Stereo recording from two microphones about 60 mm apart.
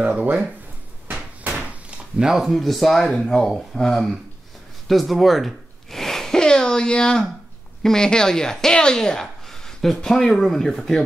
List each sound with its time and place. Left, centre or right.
0.0 s speech: right
1.4 s a sound: right
2.4 s speech: centre